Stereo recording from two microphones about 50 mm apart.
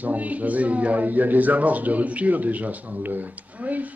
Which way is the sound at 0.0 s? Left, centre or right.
Right.